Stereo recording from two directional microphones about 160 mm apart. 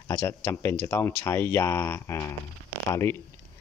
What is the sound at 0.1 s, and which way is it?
Speech, 15° left (ahead or behind).